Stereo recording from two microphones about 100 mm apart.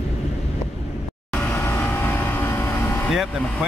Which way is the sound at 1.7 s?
20° left (ahead or behind).